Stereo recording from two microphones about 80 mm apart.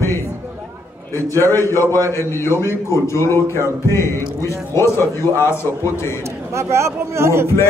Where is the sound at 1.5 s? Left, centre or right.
Left.